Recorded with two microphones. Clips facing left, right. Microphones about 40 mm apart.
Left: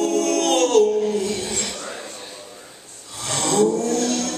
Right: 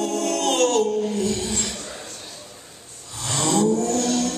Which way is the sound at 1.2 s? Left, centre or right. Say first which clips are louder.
Even; left.